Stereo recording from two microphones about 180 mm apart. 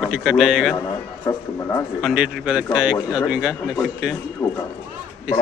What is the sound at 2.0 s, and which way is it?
A man's voice, centre (ahead or behind).